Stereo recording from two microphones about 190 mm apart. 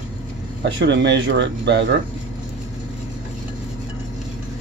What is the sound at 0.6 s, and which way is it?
Speech, 65° right (ahead or behind).